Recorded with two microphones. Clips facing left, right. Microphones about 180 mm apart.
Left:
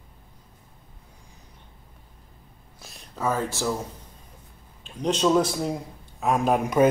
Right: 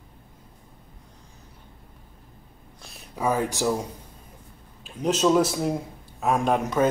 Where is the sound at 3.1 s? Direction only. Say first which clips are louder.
Right 2 dB; 15° right (ahead or behind).